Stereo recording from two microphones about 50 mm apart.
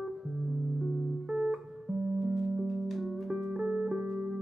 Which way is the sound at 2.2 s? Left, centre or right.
Centre.